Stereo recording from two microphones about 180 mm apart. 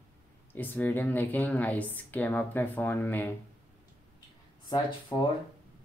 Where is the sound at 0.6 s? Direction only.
10° left (ahead or behind).